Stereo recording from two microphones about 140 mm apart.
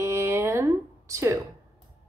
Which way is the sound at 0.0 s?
20° right (ahead or behind).